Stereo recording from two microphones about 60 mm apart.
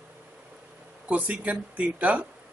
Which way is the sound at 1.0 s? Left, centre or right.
Right.